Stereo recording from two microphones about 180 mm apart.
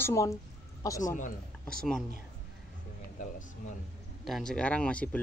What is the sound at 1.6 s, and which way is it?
Speech, 5° left (ahead or behind).